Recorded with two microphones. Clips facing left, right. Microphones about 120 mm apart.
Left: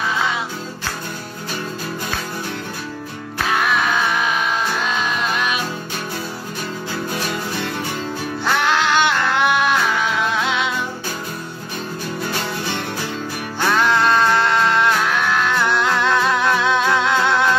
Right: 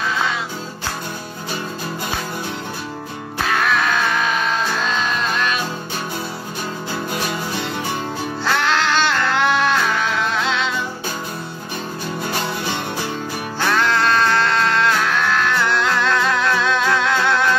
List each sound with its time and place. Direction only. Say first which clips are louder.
3.5 s music: even; 10° left (ahead or behind)
8.5 s music: left 1 dB; 10° left (ahead or behind)
13.7 s music: left 2 dB; 15° left (ahead or behind)